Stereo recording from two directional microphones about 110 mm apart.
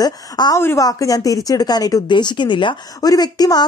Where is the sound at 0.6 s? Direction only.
20° left (ahead or behind).